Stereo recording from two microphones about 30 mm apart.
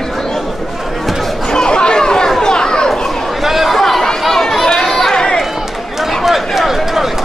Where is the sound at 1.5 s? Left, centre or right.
Left.